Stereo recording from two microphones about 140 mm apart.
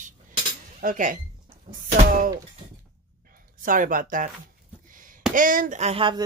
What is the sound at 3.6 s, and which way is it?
Speech, 70° right (ahead or behind).